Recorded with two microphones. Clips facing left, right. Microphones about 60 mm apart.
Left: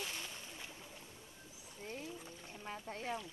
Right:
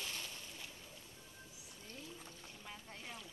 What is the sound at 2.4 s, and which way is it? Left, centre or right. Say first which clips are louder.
Speech: left 6 dB; left.